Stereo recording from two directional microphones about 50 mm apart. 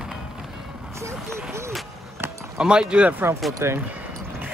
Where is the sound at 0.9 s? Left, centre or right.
Right.